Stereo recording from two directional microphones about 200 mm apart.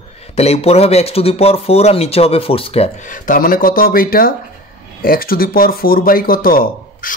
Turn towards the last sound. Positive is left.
turn(degrees=45)  # may be behind; listen again after turning